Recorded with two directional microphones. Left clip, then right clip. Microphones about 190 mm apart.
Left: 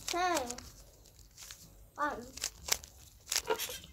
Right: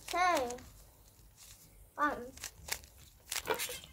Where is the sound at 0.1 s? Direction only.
65° right (ahead or behind).